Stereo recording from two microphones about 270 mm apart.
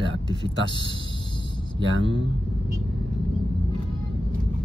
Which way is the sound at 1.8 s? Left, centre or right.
Right.